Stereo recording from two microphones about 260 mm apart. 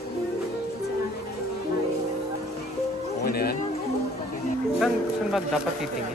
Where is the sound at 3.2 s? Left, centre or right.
Left.